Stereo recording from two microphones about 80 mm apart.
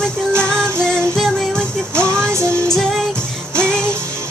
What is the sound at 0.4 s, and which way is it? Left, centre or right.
Music, centre.